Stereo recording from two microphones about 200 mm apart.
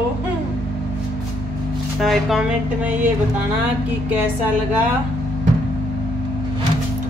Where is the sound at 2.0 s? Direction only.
Centre (ahead or behind).